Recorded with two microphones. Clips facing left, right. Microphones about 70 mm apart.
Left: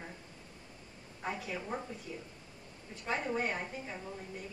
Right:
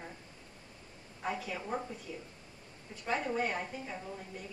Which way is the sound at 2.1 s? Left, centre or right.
Centre.